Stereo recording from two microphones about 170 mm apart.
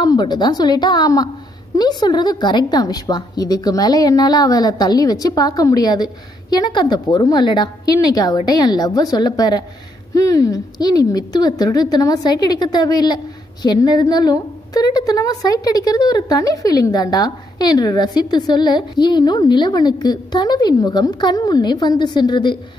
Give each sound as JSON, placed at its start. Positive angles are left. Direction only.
{"t": 0.0, "sound": "a woman's voice", "side_deg": 25}